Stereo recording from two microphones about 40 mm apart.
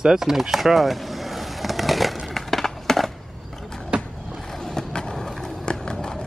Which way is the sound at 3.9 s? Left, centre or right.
Right.